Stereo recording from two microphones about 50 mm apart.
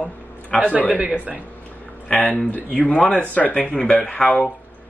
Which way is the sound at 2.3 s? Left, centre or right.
Left.